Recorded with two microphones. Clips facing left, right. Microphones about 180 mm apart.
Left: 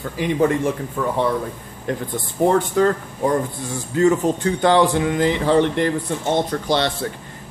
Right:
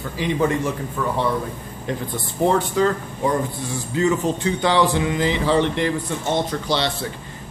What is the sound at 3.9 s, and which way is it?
Speech, 50° left (ahead or behind).